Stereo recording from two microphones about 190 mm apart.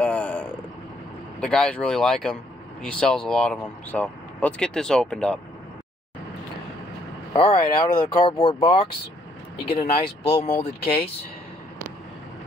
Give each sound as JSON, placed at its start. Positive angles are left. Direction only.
{"t": 0.0, "sound": "vehicle", "side_deg": 10}
{"t": 1.4, "sound": "speech", "side_deg": 5}
{"t": 7.3, "sound": "speech", "side_deg": 25}